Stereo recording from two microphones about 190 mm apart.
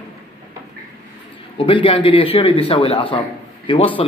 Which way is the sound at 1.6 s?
25° left (ahead or behind).